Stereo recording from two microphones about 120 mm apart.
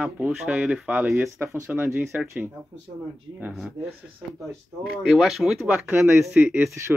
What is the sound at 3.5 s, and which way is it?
Speech, centre (ahead or behind).